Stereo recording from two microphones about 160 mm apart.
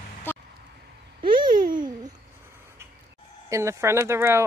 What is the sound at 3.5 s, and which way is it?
Speech, 20° right (ahead or behind).